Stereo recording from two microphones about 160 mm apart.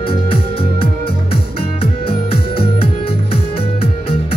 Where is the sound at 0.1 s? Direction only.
35° left (ahead or behind).